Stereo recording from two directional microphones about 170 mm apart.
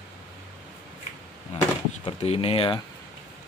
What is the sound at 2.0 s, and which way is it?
Speech, 35° left (ahead or behind).